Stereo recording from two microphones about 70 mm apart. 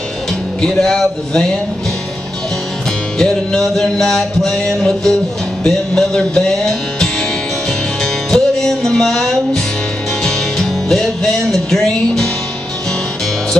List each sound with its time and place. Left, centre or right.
0.6 s music: centre
3.2 s music: centre